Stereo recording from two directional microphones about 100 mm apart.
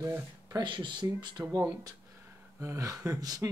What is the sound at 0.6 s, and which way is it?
Speech, 50° right (ahead or behind).